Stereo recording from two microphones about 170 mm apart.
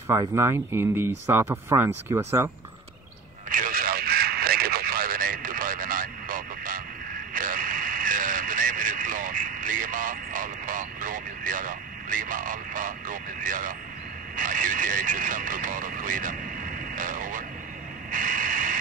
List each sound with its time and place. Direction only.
0.1 s speech: 15° right (ahead or behind)
3.4 s radio: 55° right (ahead or behind)
7.3 s vehicle: 55° right (ahead or behind)
14.3 s radio: 50° right (ahead or behind)
18.1 s a sound: 50° right (ahead or behind)